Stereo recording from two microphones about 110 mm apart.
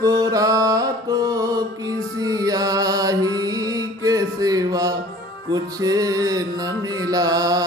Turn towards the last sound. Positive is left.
turn(degrees=-35)  # may be behind; listen again after turning